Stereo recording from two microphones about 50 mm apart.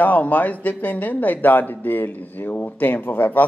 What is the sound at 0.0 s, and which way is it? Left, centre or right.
Speech, left.